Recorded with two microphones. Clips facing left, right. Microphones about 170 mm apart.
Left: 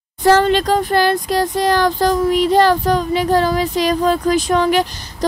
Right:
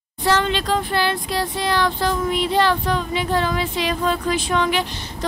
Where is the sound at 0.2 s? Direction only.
45° left (ahead or behind).